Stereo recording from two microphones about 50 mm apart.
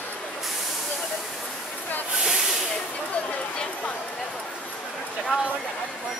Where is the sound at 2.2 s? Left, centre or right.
Centre.